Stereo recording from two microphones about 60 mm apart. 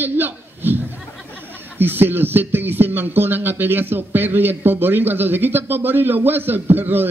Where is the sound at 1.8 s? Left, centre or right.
Right.